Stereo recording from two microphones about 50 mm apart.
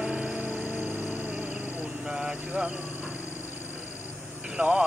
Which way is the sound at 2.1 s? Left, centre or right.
Centre.